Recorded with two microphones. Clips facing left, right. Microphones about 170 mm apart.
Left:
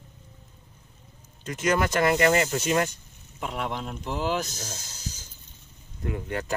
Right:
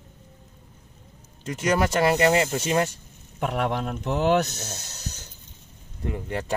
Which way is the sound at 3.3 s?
60° right (ahead or behind).